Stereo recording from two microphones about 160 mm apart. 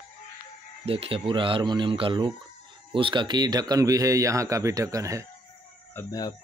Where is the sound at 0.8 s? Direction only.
35° right (ahead or behind); by 5.3 s 20° right (ahead or behind).